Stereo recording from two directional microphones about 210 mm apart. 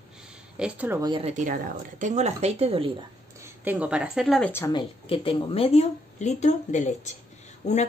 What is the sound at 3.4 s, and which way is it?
Speech, 10° right (ahead or behind).